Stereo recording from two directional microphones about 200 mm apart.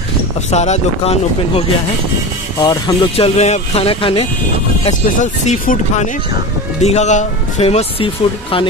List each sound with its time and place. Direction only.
0.5 s speech: 35° left (ahead or behind)
2.6 s speech: 20° left (ahead or behind)